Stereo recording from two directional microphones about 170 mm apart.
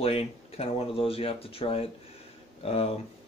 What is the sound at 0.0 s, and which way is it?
Speech, 35° left (ahead or behind).